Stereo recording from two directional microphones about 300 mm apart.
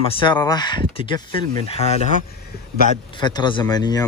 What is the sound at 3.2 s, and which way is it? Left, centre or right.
Speech, centre.